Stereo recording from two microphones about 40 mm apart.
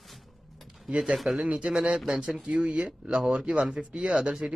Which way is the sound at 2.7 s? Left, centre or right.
Right.